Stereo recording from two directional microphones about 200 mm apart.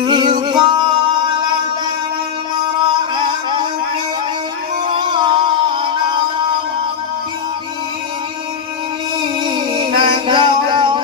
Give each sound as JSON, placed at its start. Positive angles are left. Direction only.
{"t": 0.0, "sound": "music", "side_deg": -25}
{"t": 4.8, "sound": "music", "side_deg": -25}
{"t": 9.5, "sound": "music", "side_deg": -25}